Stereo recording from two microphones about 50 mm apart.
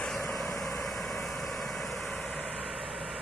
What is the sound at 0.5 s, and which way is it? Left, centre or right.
Vehicle, centre.